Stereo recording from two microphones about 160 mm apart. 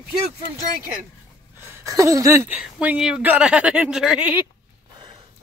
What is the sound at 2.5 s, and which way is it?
A woman's voice, 10° right (ahead or behind).